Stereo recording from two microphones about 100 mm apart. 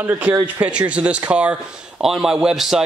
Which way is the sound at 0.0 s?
20° right (ahead or behind).